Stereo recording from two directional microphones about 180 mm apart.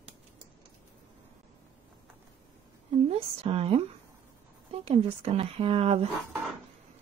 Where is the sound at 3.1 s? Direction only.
35° right (ahead or behind).